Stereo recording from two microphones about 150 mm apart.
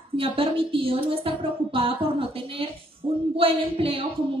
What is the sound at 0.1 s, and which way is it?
Speech, 35° right (ahead or behind).